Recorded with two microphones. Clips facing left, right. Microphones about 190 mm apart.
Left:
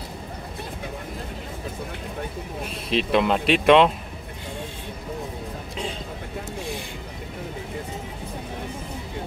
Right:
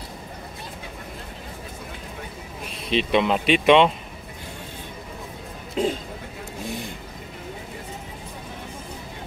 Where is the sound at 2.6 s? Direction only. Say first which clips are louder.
Right 1 dB; centre (ahead or behind).